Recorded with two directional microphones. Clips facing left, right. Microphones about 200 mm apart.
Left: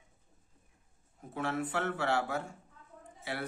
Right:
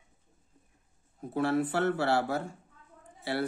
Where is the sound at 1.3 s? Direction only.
35° right (ahead or behind).